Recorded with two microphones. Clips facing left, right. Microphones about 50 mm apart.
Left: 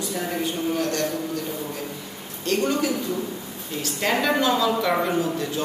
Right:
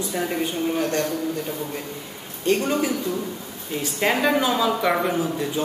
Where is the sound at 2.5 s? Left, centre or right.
Right.